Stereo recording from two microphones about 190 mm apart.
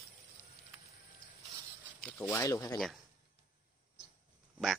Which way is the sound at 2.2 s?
15° left (ahead or behind).